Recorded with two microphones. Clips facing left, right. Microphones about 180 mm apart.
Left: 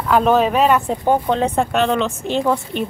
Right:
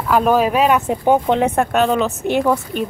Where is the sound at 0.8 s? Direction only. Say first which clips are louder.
Right 2 dB; 15° right (ahead or behind).